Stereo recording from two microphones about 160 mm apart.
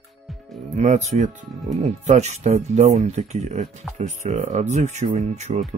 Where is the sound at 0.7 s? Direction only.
45° right (ahead or behind).